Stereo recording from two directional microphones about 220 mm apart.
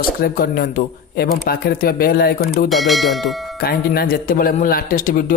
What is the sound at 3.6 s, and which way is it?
Speech, 45° left (ahead or behind).